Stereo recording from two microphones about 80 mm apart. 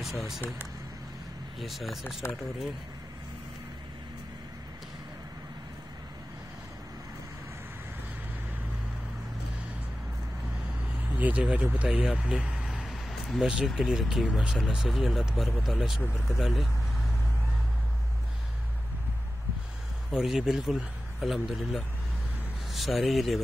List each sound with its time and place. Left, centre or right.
0.0 s speech: centre
1.6 s speech: centre
11.1 s speech: centre
20.1 s speech: centre
22.7 s speech: centre